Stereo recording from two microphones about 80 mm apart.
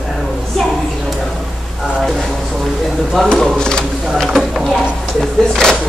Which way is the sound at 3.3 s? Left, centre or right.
Centre.